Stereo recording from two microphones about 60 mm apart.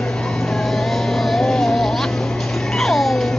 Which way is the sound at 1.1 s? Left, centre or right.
Centre.